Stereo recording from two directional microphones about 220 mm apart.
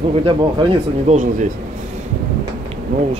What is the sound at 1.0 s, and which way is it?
Speech, 35° right (ahead or behind).